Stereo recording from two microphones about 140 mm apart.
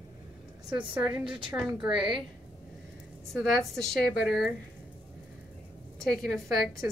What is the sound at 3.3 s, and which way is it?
A woman's voice, centre (ahead or behind).